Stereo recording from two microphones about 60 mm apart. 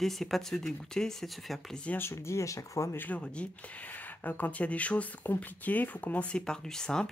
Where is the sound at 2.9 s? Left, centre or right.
Left.